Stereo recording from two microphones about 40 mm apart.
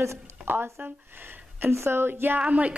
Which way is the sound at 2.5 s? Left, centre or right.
Right.